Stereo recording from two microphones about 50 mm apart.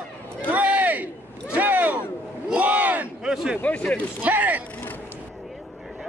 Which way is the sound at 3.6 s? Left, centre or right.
Left.